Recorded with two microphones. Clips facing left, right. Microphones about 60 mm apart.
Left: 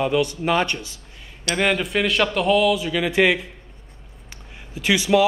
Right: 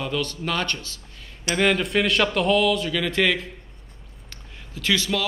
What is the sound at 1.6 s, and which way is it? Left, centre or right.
Speech, centre.